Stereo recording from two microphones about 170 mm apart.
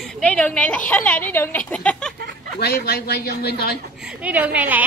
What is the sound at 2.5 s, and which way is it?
Speech, 70° left (ahead or behind).